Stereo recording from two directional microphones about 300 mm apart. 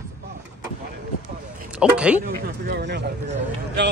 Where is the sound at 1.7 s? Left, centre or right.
Centre.